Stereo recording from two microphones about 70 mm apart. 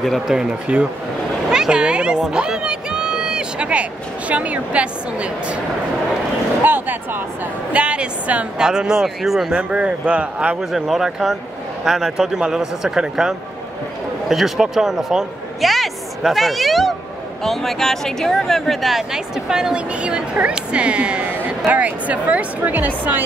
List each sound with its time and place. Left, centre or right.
0.3 s speech: centre
1.5 s a sound: centre
4.3 s speech: centre
6.6 s speech: right
7.7 s speech: centre
9.6 s speech: centre
10.6 s speech: centre; by 23.2 s right